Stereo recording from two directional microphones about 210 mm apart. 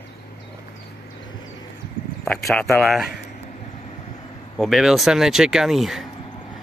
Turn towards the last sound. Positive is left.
turn(degrees=0)  # may be behind; listen again after turning